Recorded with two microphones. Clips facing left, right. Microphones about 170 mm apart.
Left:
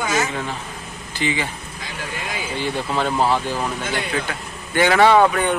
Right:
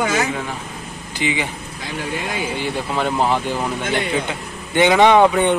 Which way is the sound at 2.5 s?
15° right (ahead or behind).